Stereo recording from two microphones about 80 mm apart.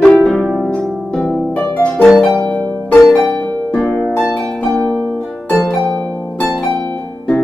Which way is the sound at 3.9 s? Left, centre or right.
Centre.